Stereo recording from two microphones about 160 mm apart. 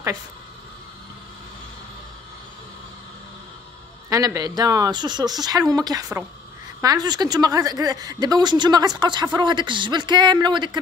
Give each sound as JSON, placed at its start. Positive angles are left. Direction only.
{"t": 4.1, "sound": "a woman's voice", "side_deg": -20}